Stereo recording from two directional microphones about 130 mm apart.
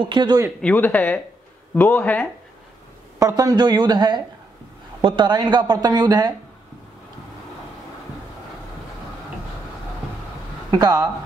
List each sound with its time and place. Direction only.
0.0 s speech: 35° right (ahead or behind)
0.6 s speech: 10° left (ahead or behind)
3.2 s speech: 25° right (ahead or behind)
10.7 s speech: 30° right (ahead or behind)